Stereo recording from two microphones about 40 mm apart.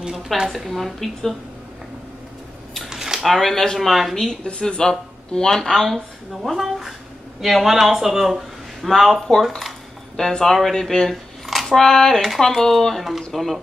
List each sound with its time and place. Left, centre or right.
0.5 s speech: centre
2.9 s a sound: centre
3.3 s speech: centre
4.5 s speech: left
5.9 s speech: centre
10.1 s speech: centre